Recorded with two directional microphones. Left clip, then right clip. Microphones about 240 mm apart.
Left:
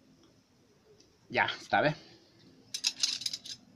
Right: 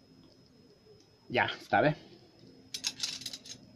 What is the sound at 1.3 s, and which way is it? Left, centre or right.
Speech, centre.